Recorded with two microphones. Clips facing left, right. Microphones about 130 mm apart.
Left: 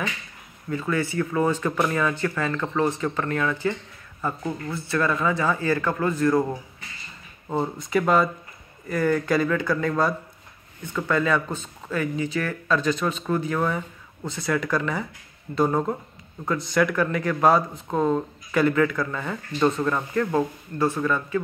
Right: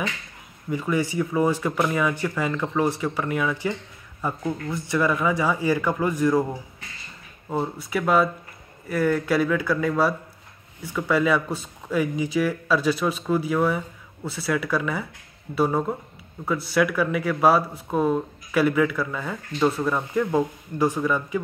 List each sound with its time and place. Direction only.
0.7 s speech: 15° right (ahead or behind)
7.5 s speech: 5° right (ahead or behind)